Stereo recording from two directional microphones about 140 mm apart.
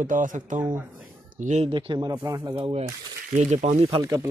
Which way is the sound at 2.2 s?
25° right (ahead or behind).